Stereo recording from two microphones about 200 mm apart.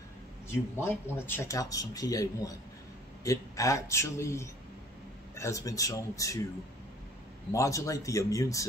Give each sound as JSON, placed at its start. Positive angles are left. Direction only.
{"t": 0.5, "sound": "speech", "side_deg": 10}
{"t": 7.5, "sound": "speech", "side_deg": 15}